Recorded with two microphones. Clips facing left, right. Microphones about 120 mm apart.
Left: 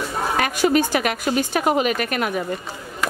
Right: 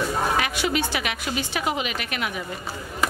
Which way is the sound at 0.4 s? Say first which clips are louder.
Left 6 dB; 45° left (ahead or behind).